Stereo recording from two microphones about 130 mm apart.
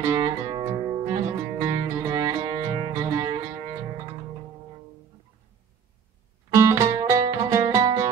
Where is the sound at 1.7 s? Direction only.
30° right (ahead or behind).